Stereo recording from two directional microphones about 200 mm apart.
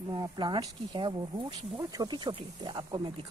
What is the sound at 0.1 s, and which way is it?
Speech, 20° right (ahead or behind).